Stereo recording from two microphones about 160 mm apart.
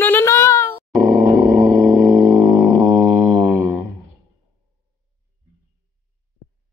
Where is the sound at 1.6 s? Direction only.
25° right (ahead or behind).